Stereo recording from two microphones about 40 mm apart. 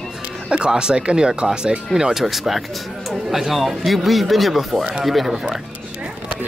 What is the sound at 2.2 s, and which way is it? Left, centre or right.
Speech, centre.